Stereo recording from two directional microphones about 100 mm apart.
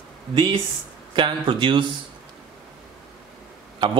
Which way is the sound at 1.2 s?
50° right (ahead or behind).